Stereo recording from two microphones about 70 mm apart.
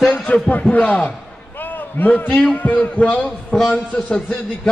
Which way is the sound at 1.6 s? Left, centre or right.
Left.